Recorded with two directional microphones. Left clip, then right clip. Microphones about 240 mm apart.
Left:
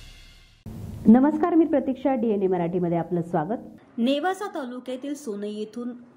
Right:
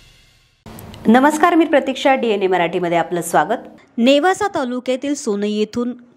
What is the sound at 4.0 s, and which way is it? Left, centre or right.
Speech, right.